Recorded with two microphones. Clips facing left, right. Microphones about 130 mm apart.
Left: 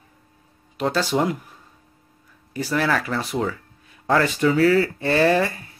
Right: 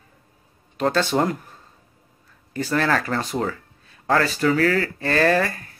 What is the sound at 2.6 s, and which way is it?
Speech, 10° left (ahead or behind).